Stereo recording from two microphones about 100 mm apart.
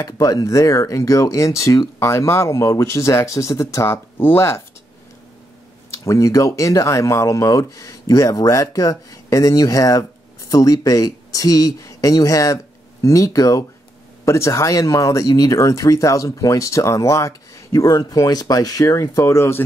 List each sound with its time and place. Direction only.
0.0 s speech: 35° left (ahead or behind)
5.9 s speech: 30° left (ahead or behind)